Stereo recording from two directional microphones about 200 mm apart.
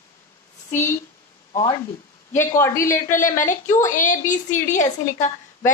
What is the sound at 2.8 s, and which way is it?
A woman's voice, 40° left (ahead or behind).